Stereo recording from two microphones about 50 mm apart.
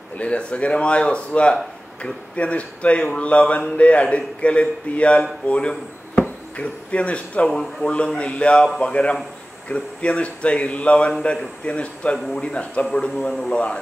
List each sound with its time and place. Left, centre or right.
0.2 s speech: left
3.0 s speech: centre
3.3 s speech: left
7.4 s speech: centre
8.2 s speech: left